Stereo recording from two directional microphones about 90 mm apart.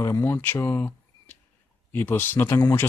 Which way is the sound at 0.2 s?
25° left (ahead or behind).